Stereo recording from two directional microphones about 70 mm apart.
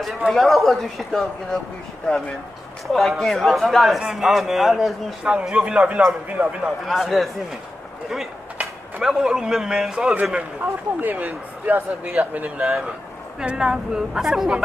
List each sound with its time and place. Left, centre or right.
0.0 s speech: centre
2.9 s a woman's voice: centre; by 6.7 s right
6.9 s speech: centre
9.0 s a woman's voice: centre
10.6 s a woman's voice: right; by 14.6 s centre